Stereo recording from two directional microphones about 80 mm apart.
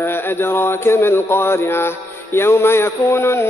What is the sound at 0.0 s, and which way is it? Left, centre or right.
Mantra, left.